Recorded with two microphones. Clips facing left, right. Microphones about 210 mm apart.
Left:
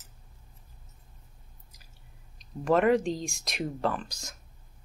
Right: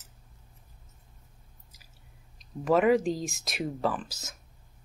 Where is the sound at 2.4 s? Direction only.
Centre (ahead or behind).